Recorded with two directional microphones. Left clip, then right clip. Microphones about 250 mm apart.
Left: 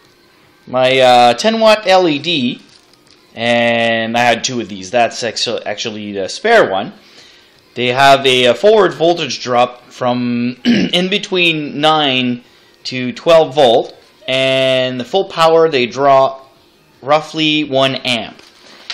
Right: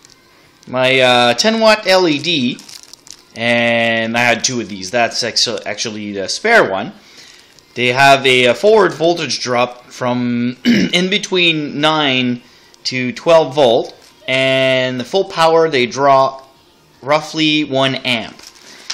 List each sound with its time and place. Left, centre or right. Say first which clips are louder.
0.7 s speech: left 2 dB; centre